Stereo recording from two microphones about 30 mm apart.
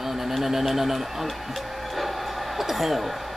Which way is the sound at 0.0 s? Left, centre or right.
Centre.